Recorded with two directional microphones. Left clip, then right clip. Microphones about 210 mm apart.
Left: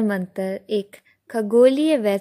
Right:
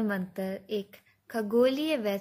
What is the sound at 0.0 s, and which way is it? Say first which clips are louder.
A woman's voice: left 8 dB; 45° left (ahead or behind).